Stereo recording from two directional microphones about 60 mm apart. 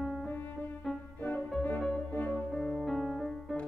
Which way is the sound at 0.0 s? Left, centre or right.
Centre.